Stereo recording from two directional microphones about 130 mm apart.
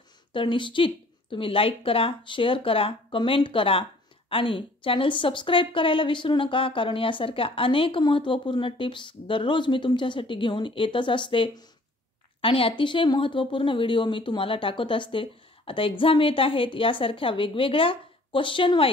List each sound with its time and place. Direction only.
0.3 s a woman's voice: 40° left (ahead or behind)